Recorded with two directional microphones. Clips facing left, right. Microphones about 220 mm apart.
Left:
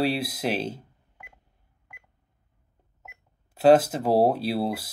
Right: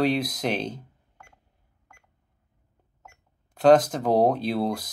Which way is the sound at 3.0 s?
10° left (ahead or behind).